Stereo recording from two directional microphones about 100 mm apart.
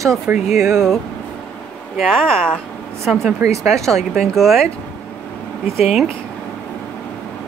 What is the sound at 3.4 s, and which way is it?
Speech, 30° right (ahead or behind).